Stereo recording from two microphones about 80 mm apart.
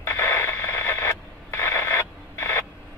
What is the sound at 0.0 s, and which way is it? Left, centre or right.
Radio, left.